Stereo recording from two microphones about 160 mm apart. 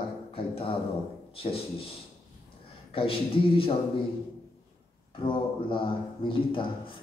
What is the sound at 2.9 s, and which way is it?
Speech, 35° left (ahead or behind).